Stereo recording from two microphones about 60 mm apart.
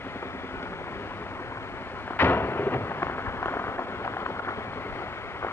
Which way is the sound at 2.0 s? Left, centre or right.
Left.